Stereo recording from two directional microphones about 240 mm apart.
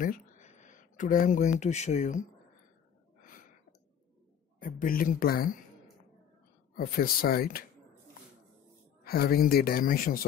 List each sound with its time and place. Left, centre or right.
0.0 s speech: left
4.6 s speech: left
6.7 s speech: left
9.0 s speech: left